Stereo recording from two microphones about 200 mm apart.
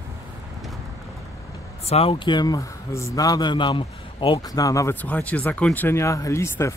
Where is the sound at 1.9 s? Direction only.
30° left (ahead or behind).